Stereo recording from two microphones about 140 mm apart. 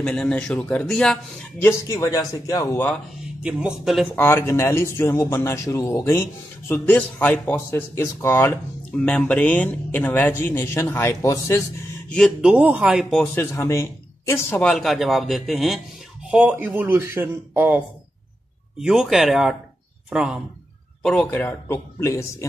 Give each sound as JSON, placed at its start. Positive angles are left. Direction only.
{"t": 0.0, "sound": "speech", "side_deg": 10}
{"t": 1.6, "sound": "speech", "side_deg": 20}
{"t": 3.4, "sound": "a man's voice", "side_deg": -5}
{"t": 4.1, "sound": "speech", "side_deg": 15}
{"t": 12.4, "sound": "speech", "side_deg": -10}
{"t": 13.2, "sound": "speech", "side_deg": 15}
{"t": 14.6, "sound": "a man's voice", "side_deg": 5}
{"t": 18.8, "sound": "a man's voice", "side_deg": -5}
{"t": 21.0, "sound": "speech", "side_deg": 10}